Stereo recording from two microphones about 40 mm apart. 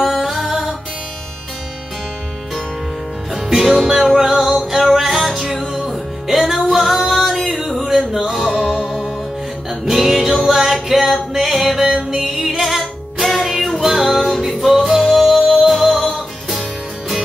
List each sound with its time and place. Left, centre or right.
0.0 s music: centre
3.3 s music: centre
8.5 s music: centre